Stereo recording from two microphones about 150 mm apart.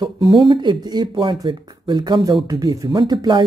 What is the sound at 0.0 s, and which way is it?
A woman's voice, 25° right (ahead or behind).